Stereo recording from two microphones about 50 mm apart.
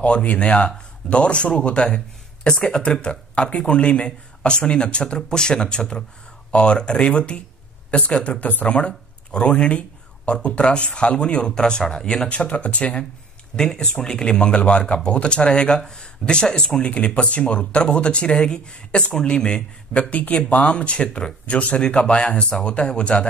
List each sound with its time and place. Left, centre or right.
0.0 s speech: left
8.6 s speech: left
12.3 s speech: left